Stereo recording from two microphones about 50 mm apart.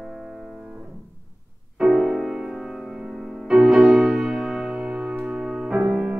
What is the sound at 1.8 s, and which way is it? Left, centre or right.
Music, centre.